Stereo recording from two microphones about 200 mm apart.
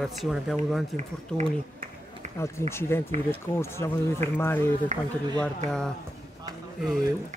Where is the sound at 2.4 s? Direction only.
15° left (ahead or behind).